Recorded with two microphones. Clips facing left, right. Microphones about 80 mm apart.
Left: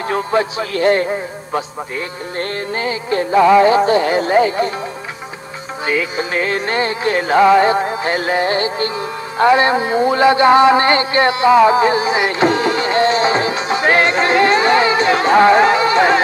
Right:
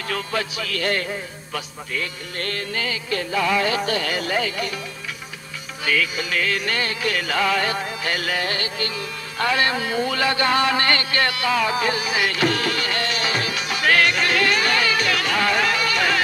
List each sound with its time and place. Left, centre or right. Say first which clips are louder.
0.1 s a man's voice: left 9 dB; left
5.9 s music: left 4 dB; left